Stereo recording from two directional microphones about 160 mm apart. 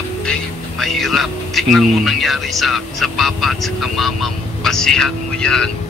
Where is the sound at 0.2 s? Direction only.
5° left (ahead or behind).